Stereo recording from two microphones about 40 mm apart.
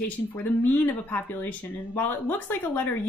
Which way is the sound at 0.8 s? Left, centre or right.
Left.